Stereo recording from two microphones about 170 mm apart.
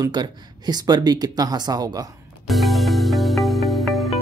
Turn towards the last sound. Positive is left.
turn(degrees=0)  # may be behind; listen again after turning